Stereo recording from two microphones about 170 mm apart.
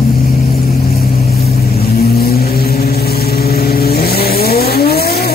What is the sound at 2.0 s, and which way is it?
Vehicle, 65° left (ahead or behind).